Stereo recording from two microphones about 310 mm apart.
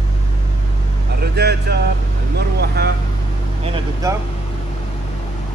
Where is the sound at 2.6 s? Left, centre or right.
Right.